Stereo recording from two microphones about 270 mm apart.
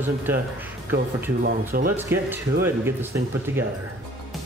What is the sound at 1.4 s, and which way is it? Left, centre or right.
Speech, right.